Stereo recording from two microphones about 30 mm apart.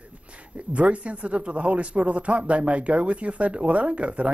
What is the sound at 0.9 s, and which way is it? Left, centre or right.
A man's voice, right.